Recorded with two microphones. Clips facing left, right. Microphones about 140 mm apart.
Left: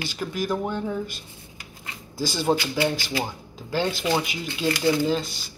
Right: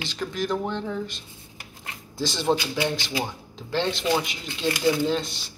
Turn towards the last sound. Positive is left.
turn(degrees=0)  # may be behind; listen again after turning